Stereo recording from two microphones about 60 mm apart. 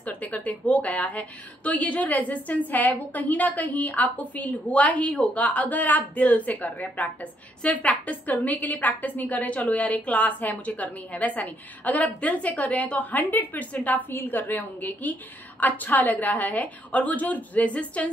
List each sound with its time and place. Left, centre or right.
0.0 s a woman's voice: left